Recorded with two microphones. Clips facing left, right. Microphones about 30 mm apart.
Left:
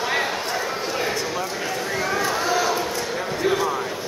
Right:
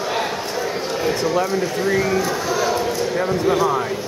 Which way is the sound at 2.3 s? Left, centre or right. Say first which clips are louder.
Even; centre.